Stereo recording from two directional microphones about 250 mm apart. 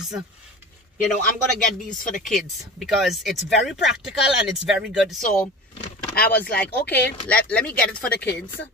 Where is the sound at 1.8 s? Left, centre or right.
Left.